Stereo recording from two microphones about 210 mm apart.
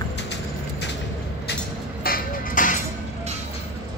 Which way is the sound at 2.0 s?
40° left (ahead or behind).